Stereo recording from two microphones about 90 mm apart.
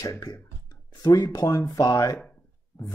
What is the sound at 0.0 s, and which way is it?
Speech, 40° left (ahead or behind).